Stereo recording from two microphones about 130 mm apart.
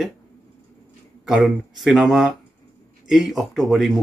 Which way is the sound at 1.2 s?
5° right (ahead or behind).